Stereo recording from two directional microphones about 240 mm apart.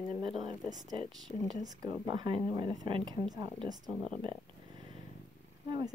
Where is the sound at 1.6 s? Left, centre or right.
Centre.